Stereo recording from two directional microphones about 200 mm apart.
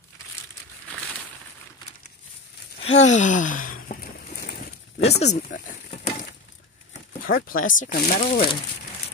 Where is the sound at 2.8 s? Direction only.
35° left (ahead or behind); by 4.6 s 50° left (ahead or behind).